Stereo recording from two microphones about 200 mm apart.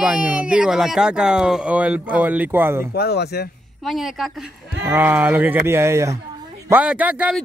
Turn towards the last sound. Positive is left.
turn(degrees=-5)  # may be behind; listen again after turning